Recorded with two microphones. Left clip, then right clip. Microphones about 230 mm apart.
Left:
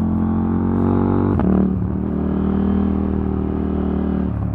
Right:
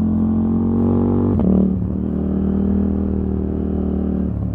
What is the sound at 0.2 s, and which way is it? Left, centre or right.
Music, centre.